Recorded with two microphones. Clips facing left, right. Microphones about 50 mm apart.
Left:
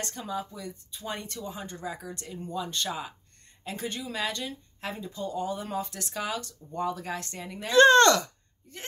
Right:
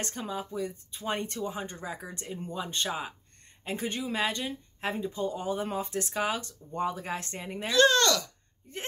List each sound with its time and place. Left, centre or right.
0.0 s speech: right
7.7 s speech: left
8.7 s speech: right